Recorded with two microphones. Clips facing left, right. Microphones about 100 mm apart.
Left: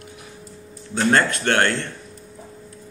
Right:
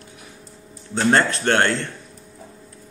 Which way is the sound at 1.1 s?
25° right (ahead or behind).